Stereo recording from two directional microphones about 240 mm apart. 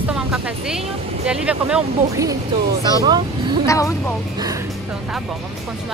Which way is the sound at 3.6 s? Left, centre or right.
Centre.